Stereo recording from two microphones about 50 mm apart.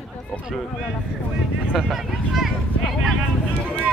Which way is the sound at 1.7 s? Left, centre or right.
Centre.